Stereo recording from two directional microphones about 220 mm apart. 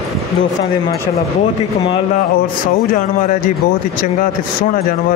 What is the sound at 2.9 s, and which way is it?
A man's voice, 35° left (ahead or behind).